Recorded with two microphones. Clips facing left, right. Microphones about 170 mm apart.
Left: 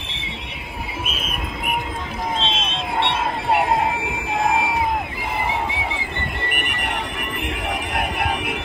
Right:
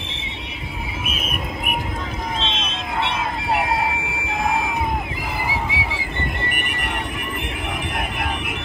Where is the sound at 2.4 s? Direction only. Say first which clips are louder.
Left 2 dB; 30° left (ahead or behind).